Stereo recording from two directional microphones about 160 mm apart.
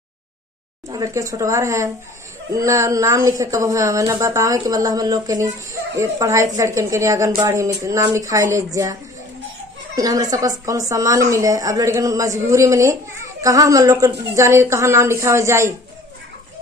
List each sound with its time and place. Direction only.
0.8 s speech: 20° right (ahead or behind)
9.9 s speech: 20° right (ahead or behind)